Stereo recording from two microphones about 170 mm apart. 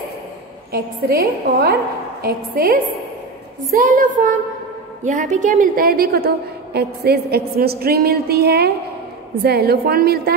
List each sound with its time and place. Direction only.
0.7 s a woman's voice: 65° right (ahead or behind)
3.7 s a sound: 55° right (ahead or behind)
5.0 s a woman's voice: 45° right (ahead or behind); by 10.3 s 65° right (ahead or behind)